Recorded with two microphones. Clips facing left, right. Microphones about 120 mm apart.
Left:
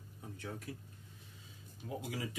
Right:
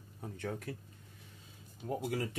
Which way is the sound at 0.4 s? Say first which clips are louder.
Right 5 dB; 60° right (ahead or behind).